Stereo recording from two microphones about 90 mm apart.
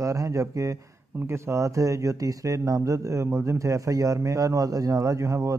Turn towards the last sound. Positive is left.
turn(degrees=-35)  # may be behind; listen again after turning